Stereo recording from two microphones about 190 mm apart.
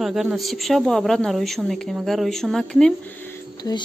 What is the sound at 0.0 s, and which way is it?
A woman's voice, centre (ahead or behind).